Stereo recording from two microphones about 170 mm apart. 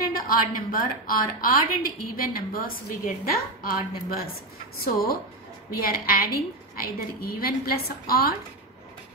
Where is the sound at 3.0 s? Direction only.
60° left (ahead or behind).